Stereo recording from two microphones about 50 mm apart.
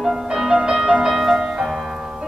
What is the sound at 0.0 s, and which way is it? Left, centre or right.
Music, centre.